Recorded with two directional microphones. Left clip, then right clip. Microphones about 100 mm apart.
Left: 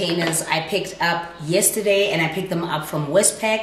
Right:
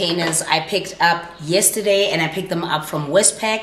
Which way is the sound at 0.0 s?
15° right (ahead or behind).